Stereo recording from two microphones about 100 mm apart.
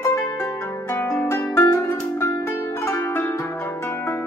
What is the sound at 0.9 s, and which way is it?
Music, 25° left (ahead or behind).